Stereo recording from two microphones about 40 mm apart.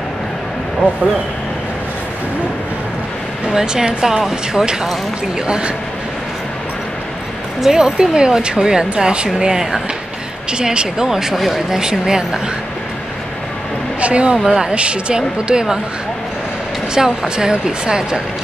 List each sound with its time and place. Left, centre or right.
3.4 s speech: centre
7.6 s speech: centre
9.3 s speech: centre
11.3 s speech: centre
11.7 s speech: centre
14.0 s speech: right
14.4 s speech: centre
14.7 s speech: right
17.0 s speech: centre